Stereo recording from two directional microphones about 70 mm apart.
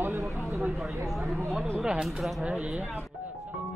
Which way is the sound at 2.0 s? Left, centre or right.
Centre.